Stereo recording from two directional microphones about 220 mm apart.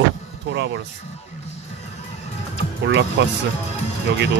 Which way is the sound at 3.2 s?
50° right (ahead or behind).